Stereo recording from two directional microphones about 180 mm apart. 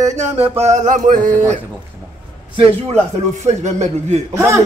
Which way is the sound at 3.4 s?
40° right (ahead or behind).